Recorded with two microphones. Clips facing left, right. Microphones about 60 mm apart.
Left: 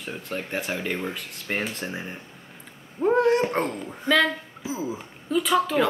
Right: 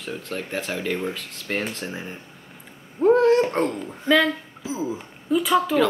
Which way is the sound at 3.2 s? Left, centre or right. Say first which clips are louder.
Right 1 dB; centre.